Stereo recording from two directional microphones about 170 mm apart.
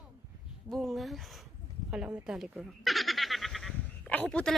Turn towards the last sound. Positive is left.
turn(degrees=5)  # may be behind; listen again after turning